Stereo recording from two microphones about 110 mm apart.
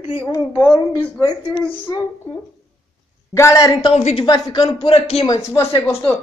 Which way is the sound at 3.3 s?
30° left (ahead or behind).